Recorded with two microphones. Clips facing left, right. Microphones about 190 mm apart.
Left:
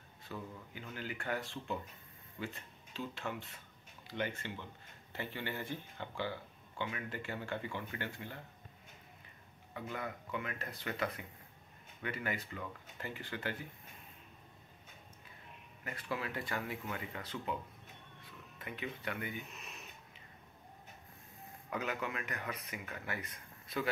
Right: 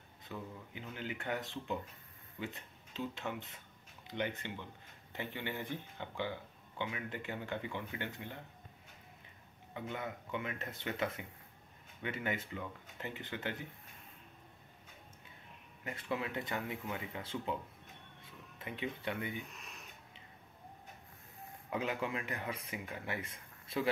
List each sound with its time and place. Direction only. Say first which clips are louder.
0.2 s speech: even; 20° right (ahead or behind)
2.4 s music: even; 20° right (ahead or behind)
3.2 s speech: even; 20° right (ahead or behind)
9.8 s speech: even; 20° right (ahead or behind)
15.8 s speech: right 2 dB; 20° right (ahead or behind)
18.6 s speech: right 2 dB; 25° right (ahead or behind)
19.5 s a sound: left 1 dB; centre (ahead or behind)
21.6 s speech: right 2 dB; 25° right (ahead or behind)